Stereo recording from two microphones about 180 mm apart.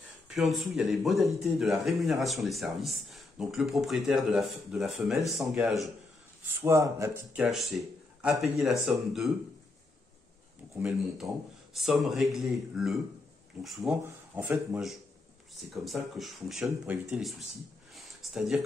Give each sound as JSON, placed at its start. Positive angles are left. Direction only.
{"t": 0.3, "sound": "speech", "side_deg": 0}
{"t": 6.6, "sound": "speech", "side_deg": -15}
{"t": 7.4, "sound": "speech", "side_deg": 0}
{"t": 10.7, "sound": "speech", "side_deg": -5}
{"t": 14.0, "sound": "speech", "side_deg": -15}
{"t": 15.7, "sound": "speech", "side_deg": 0}
{"t": 17.9, "sound": "a sound", "side_deg": 0}